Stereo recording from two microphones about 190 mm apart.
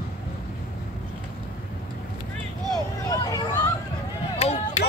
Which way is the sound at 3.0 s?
15° left (ahead or behind).